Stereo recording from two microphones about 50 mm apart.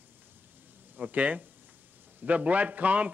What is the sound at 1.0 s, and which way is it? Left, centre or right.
A man's voice, right.